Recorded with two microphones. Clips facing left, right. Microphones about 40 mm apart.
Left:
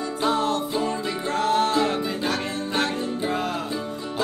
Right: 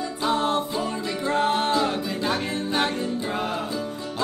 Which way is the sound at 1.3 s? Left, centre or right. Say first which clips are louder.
Left 1 dB; right.